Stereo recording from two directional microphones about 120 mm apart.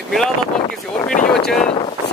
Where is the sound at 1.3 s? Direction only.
5° left (ahead or behind).